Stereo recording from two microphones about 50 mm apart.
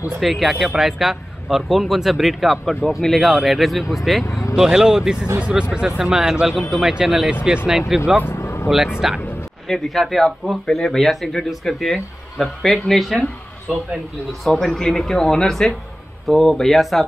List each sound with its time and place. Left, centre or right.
0.2 s speech: centre
4.6 s speech: centre
8.4 s vehicle: left
8.6 s speech: centre
14.4 s speech: centre